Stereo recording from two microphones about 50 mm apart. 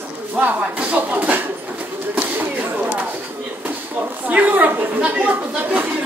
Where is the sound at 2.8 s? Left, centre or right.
Right.